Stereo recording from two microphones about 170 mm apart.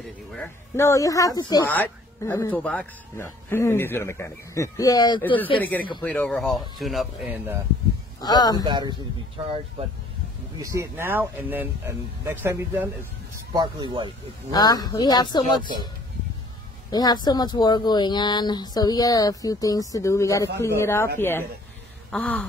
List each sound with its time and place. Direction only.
0.7 s a woman's voice: 15° left (ahead or behind)
1.7 s speech: 10° left (ahead or behind)
5.6 s speech: 10° left (ahead or behind); by 7.6 s 10° right (ahead or behind)
8.2 s a woman's voice: 25° left (ahead or behind)
8.6 s a man's voice: 25° right (ahead or behind)
10.6 s speech: 20° right (ahead or behind)
13.5 s a man's voice: 25° right (ahead or behind)
14.5 s a woman's voice: 25° left (ahead or behind)
16.9 s a woman's voice: 25° left (ahead or behind); by 22.5 s 5° left (ahead or behind)